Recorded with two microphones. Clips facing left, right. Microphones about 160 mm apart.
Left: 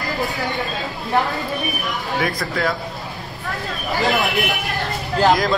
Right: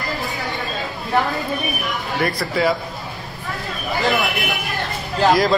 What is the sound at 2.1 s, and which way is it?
Speech, centre (ahead or behind).